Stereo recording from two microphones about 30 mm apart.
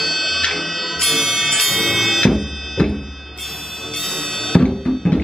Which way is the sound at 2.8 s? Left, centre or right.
Left.